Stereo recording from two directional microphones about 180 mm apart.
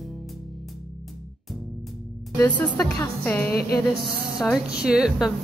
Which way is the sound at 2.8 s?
15° left (ahead or behind).